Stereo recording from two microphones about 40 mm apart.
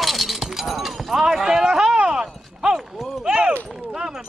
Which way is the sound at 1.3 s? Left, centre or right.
Centre.